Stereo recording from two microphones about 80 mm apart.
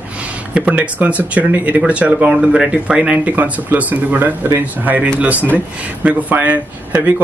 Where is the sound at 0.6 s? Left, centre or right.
Centre.